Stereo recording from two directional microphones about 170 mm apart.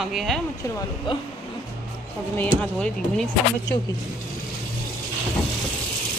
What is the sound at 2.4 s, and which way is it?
Speech, 5° left (ahead or behind).